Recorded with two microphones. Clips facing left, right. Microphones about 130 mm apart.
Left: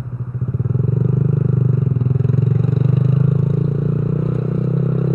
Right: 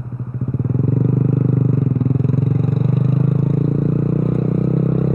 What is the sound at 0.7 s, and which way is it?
Vehicle, 60° right (ahead or behind).